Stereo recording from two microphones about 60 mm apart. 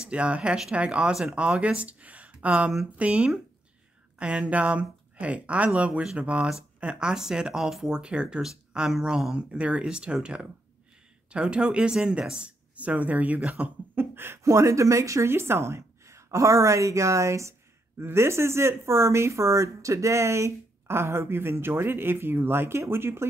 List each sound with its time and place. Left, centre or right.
0.0 s speech: centre
13.9 s speech: right
14.4 s a woman's voice: right